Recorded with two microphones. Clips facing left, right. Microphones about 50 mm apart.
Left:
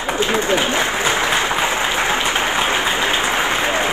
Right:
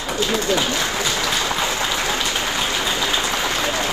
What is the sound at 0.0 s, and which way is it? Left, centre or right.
Applause, left.